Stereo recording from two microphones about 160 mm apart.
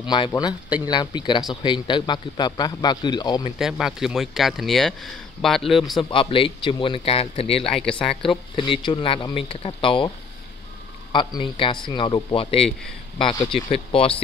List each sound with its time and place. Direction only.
0.0 s a man's voice: 30° left (ahead or behind)
3.5 s speech: 5° right (ahead or behind)
6.0 s speech: 35° left (ahead or behind)
7.7 s speech: 5° left (ahead or behind)
8.5 s a man's voice: 30° left (ahead or behind)